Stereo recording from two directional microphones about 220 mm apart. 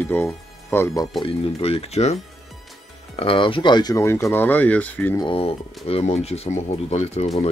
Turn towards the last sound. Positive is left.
turn(degrees=30)  # may be behind; listen again after turning